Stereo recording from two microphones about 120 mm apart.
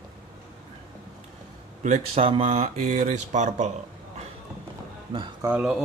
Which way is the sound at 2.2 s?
55° right (ahead or behind).